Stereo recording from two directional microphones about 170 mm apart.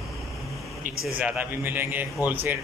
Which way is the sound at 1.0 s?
10° right (ahead or behind).